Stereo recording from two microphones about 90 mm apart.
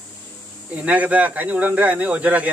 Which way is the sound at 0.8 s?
15° right (ahead or behind).